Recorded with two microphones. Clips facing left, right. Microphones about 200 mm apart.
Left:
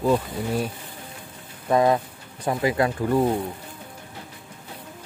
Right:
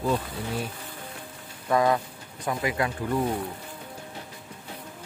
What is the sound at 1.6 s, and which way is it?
Speech, 25° left (ahead or behind).